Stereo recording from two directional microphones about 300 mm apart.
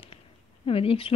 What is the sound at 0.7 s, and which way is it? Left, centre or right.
Speech, centre.